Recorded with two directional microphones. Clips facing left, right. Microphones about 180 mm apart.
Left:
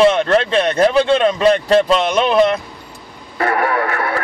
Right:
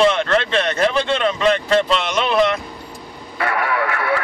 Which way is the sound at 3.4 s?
40° left (ahead or behind).